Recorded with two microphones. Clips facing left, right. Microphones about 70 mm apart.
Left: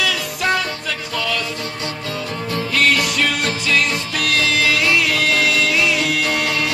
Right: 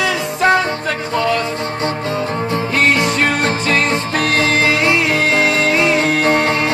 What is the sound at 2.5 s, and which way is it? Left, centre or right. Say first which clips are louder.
Music: right 1 dB; right.